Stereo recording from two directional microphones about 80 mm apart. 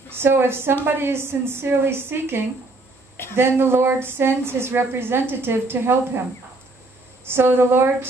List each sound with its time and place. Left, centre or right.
0.1 s a woman's voice: right
7.2 s a woman's voice: right